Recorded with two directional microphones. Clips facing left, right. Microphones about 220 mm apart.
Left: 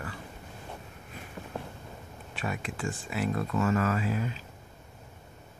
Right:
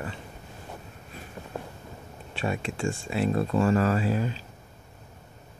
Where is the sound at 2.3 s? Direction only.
25° right (ahead or behind).